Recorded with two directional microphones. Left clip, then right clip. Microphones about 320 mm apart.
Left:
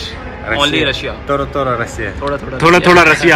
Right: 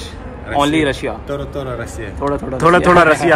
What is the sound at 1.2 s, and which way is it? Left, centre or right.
Speech, centre.